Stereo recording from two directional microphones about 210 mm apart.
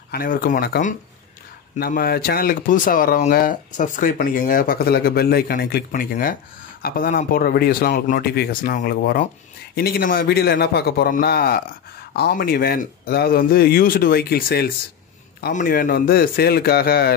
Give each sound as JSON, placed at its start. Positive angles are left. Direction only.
{"t": 0.1, "sound": "speech", "side_deg": 45}